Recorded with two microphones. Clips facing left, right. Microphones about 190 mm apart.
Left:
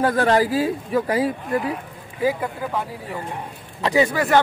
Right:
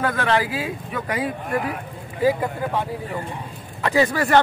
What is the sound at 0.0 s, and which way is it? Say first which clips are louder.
Speech: left 4 dB; 35° left (ahead or behind).